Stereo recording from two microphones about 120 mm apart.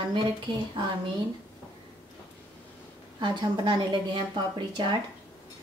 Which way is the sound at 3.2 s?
40° right (ahead or behind).